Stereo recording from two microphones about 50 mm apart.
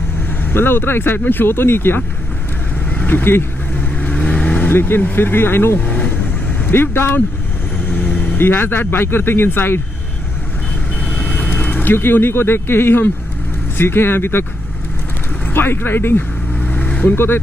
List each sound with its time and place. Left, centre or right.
0.5 s speech: left
3.1 s speech: left
3.9 s vehicle: left
4.6 s speech: left
8.4 s speech: left
11.1 s vehicle: left
11.5 s speech: left
15.5 s speech: left
16.5 s vehicle: left
17.1 s speech: left